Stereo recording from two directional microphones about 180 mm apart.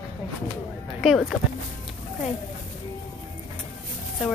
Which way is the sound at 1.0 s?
Centre (ahead or behind).